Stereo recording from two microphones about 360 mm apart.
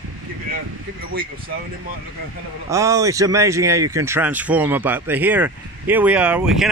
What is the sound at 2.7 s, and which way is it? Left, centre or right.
Speech, centre.